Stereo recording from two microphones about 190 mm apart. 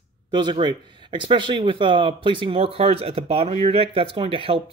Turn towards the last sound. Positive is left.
turn(degrees=-30)  # may be behind; listen again after turning